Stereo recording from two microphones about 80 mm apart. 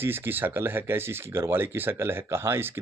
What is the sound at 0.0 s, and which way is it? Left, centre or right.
Speech, right.